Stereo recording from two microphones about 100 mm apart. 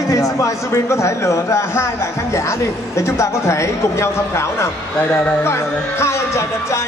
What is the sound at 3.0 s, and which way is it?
A man's voice, 30° left (ahead or behind).